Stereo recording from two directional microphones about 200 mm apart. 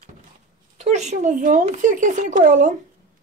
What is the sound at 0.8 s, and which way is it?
Speech, 35° right (ahead or behind).